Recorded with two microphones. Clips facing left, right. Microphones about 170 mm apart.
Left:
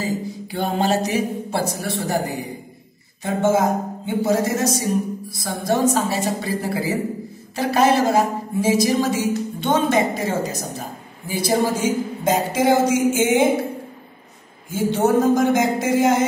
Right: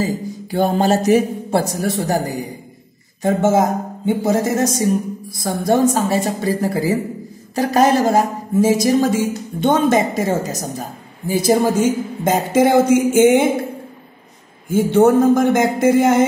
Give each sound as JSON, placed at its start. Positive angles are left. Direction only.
{"t": 0.0, "sound": "speech", "side_deg": -45}
{"t": 14.7, "sound": "speech", "side_deg": -55}